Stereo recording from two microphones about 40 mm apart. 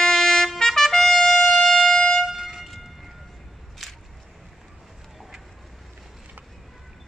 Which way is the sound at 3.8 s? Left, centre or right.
Centre.